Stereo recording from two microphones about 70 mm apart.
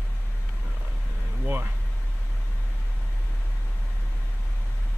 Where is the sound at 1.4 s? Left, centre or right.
Right.